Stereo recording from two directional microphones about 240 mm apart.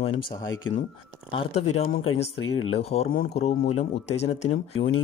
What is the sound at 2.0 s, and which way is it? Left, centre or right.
Speech, left.